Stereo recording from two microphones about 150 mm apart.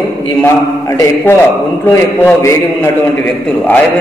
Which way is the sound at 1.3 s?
15° left (ahead or behind).